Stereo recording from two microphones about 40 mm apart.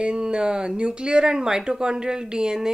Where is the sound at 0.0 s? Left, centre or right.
Right.